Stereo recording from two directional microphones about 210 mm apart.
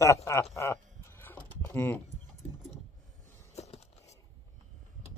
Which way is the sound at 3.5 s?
30° left (ahead or behind).